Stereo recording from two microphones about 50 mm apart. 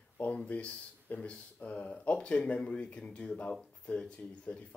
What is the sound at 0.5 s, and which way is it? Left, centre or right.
Speech, left.